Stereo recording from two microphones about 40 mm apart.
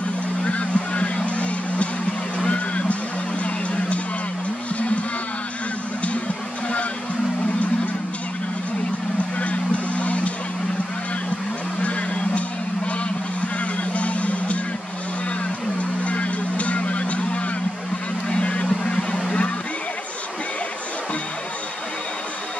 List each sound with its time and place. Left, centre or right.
0.4 s vehicle: left
2.3 s a sound: left
3.4 s music: left
9.4 s vehicle: left
11.8 s a sound: left
13.9 s music: left
15.8 s music: left
18.3 s honk: left
18.9 s vehicle: centre